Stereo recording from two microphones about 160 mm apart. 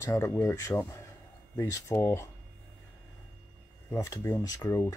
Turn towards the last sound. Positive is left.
turn(degrees=20)  # may be behind; listen again after turning